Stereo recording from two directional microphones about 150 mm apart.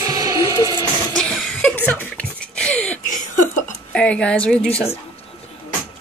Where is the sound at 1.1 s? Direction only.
5° left (ahead or behind).